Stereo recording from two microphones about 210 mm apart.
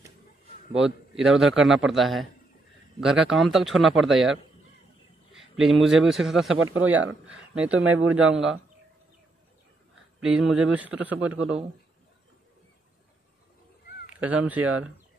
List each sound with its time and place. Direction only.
0.7 s a man's voice: centre (ahead or behind)
6.5 s speech: 75° right (ahead or behind)
7.2 s a man's voice: 5° right (ahead or behind)
10.2 s a man's voice: 5° right (ahead or behind)
14.2 s speech: 5° right (ahead or behind)